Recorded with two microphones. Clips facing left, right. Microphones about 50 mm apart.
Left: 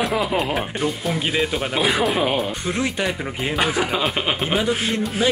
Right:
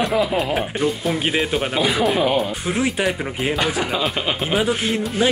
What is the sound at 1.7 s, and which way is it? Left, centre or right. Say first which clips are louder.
Speech: right 1 dB; centre.